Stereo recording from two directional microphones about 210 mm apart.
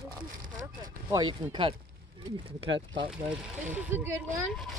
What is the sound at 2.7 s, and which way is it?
Speech, 60° right (ahead or behind).